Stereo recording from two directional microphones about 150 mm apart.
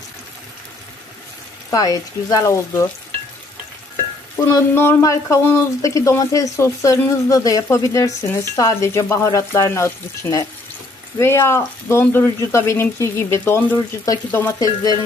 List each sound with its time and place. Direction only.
1.7 s speech: 25° left (ahead or behind)
4.4 s speech: 20° left (ahead or behind)